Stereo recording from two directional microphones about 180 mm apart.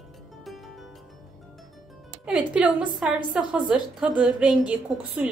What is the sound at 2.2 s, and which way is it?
A woman's voice, 5° right (ahead or behind).